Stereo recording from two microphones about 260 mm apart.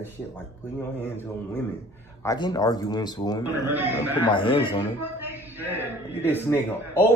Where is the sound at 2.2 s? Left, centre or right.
Centre.